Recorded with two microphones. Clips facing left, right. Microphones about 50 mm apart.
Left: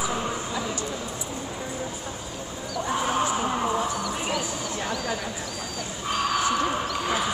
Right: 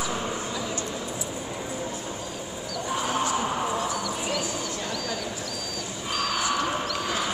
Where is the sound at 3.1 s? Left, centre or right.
Centre.